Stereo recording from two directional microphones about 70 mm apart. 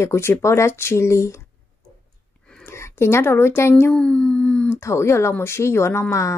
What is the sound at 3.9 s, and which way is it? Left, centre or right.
Speech, centre.